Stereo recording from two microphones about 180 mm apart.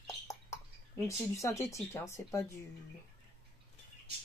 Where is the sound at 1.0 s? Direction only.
15° left (ahead or behind).